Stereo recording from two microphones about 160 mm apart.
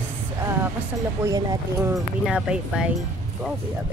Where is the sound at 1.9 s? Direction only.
5° right (ahead or behind).